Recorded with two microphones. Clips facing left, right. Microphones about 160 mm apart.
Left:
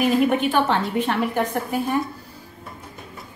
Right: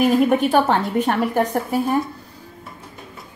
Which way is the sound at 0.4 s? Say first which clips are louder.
Right 3 dB; 40° right (ahead or behind).